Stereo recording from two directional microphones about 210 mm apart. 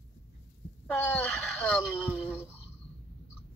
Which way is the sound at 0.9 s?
5° left (ahead or behind).